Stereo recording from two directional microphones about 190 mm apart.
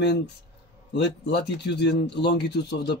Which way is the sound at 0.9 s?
65° left (ahead or behind).